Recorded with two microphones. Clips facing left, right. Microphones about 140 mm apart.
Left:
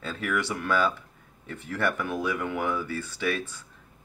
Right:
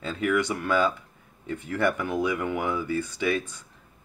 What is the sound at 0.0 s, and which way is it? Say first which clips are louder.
Speech: right 4 dB; 15° right (ahead or behind).